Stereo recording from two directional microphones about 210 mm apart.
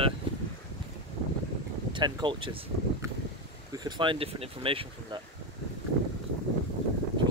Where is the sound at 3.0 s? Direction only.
15° right (ahead or behind).